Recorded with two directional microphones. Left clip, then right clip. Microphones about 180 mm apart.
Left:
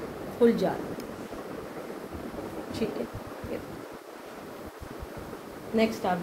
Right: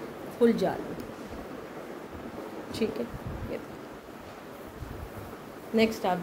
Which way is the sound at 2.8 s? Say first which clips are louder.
Right 2 dB; 55° right (ahead or behind).